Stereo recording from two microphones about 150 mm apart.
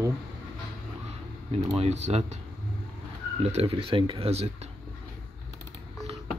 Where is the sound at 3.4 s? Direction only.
45° right (ahead or behind).